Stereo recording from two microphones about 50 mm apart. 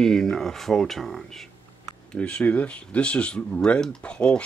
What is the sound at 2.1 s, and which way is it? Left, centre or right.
Speech, left.